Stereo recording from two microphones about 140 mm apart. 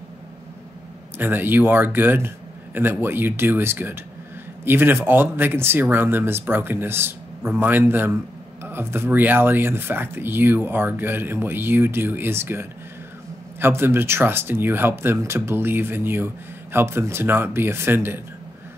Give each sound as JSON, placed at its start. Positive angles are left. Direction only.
{"t": 1.1, "sound": "speech", "side_deg": -15}